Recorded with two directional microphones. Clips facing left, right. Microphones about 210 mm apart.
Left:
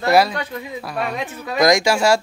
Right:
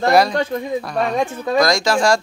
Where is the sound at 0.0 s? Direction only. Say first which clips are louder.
Right 1 dB; 5° left (ahead or behind).